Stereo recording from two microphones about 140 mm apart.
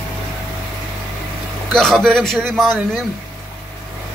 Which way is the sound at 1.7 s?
5° left (ahead or behind).